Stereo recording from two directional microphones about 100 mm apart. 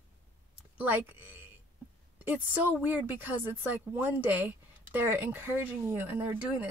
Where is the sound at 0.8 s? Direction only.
20° right (ahead or behind).